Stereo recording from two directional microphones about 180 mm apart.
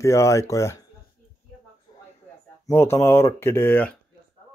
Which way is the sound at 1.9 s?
25° left (ahead or behind).